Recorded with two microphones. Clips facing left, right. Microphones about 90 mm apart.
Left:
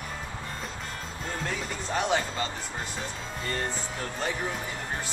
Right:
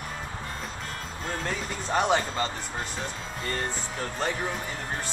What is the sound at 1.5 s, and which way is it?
Speech, centre (ahead or behind).